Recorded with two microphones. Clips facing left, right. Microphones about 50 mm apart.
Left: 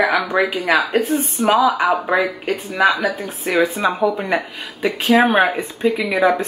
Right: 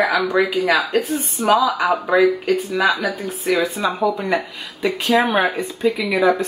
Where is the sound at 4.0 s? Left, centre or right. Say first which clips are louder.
Left 1 dB; left.